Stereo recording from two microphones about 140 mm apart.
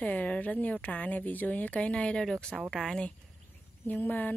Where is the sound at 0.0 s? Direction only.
10° left (ahead or behind).